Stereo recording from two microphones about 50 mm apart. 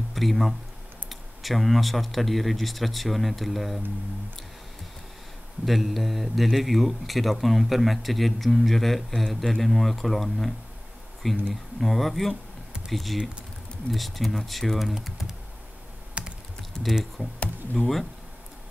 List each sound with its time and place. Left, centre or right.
0.1 s speech: centre
5.7 s speech: centre
16.2 s computer keyboard: right
16.8 s speech: centre